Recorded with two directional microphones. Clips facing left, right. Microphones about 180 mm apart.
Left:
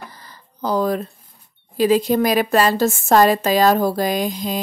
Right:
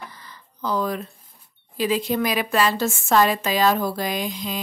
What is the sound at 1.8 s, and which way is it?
Speech, 40° left (ahead or behind).